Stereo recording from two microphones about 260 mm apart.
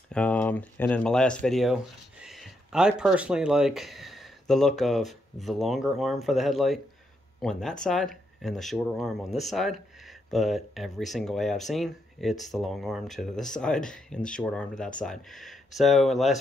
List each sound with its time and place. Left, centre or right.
0.1 s speech: centre